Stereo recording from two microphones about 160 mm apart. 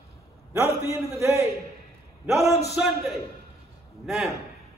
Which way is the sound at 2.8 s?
10° right (ahead or behind).